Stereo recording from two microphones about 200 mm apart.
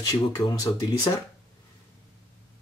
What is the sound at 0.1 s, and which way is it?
Speech, 20° left (ahead or behind).